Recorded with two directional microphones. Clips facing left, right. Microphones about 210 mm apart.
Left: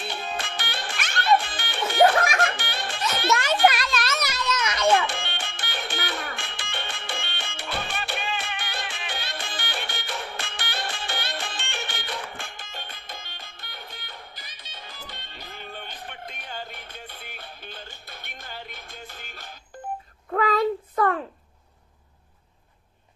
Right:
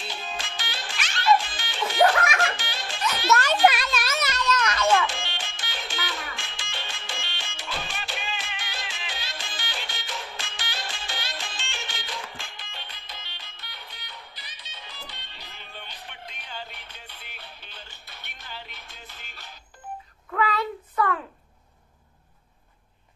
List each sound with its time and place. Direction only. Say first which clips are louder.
0.0 s music: left 4 dB; 60° left (ahead or behind)
3.6 s music: left 1 dB; 5° right (ahead or behind)
4.3 s children playing: right 2 dB; 5° left (ahead or behind)
5.0 s music: even; 60° left (ahead or behind)
20.2 s a sound: left 5 dB; 40° left (ahead or behind)